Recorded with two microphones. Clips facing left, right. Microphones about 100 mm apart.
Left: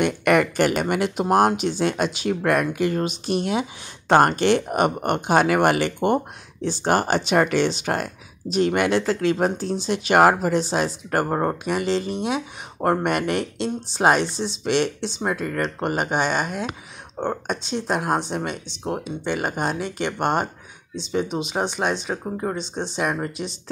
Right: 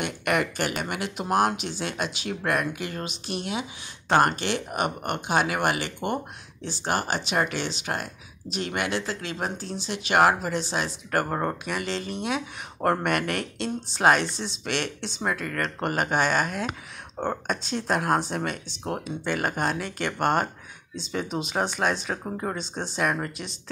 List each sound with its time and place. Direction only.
0.0 s speech: 50° left (ahead or behind)
4.6 s speech: 35° left (ahead or behind)
5.2 s speech: 45° left (ahead or behind)
5.9 s speech: 25° left (ahead or behind)
6.6 s speech: 55° left (ahead or behind)
11.1 s speech: 30° left (ahead or behind)
15.1 s speech: 20° left (ahead or behind)
17.9 s speech: 5° left (ahead or behind)
20.1 s speech: centre (ahead or behind)
21.1 s speech: 20° left (ahead or behind)
22.1 s speech: 5° left (ahead or behind)